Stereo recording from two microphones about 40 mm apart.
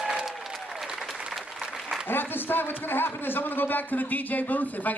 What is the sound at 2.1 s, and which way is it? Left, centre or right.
A man's voice, left.